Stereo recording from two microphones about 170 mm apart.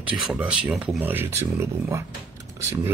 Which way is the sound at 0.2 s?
5° right (ahead or behind).